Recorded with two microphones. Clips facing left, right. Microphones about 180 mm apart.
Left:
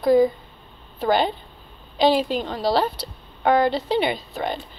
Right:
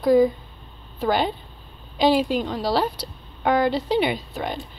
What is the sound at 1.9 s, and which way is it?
Speech, 10° right (ahead or behind).